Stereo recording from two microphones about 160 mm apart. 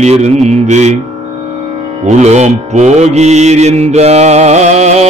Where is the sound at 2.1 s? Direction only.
45° right (ahead or behind).